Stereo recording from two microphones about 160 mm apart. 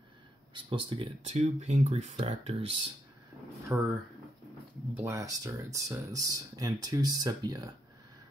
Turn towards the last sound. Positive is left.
turn(degrees=-25)  # may be behind; listen again after turning